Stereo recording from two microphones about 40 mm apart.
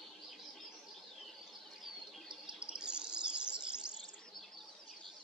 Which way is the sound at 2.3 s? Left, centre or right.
Right.